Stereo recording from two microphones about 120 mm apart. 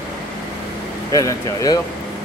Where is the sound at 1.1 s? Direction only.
30° left (ahead or behind).